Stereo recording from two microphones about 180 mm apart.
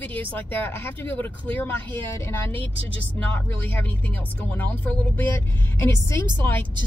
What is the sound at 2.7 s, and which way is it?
Speech, 90° left.